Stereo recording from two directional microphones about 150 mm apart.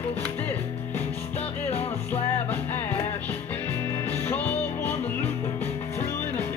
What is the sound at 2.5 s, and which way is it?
Music, 15° left (ahead or behind).